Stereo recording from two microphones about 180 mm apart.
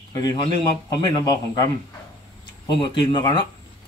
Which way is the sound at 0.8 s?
20° left (ahead or behind).